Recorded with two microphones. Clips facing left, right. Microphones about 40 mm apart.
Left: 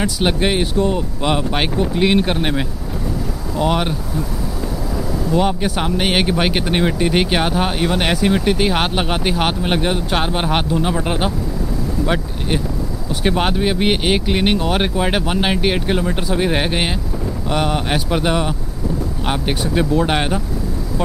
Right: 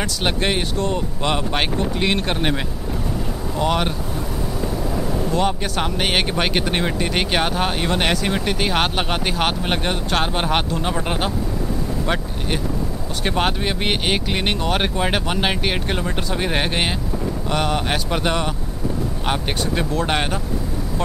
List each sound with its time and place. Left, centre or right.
0.0 s speech: centre
5.0 s vehicle: right
5.3 s speech: centre